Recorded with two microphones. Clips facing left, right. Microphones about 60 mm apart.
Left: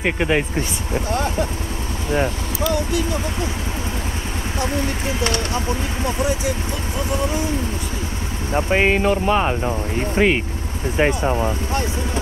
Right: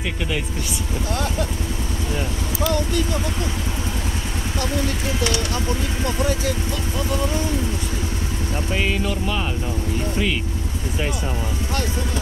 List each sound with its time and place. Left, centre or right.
0.0 s speech: left
2.7 s speech: centre
4.6 s speech: left
8.5 s speech: left